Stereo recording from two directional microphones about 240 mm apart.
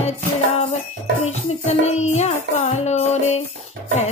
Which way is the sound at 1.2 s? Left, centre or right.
Left.